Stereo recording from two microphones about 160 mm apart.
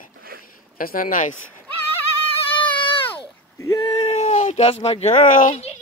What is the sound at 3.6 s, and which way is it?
Speech, 25° left (ahead or behind).